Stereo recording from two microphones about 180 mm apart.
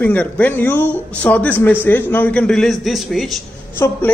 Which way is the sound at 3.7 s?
15° left (ahead or behind).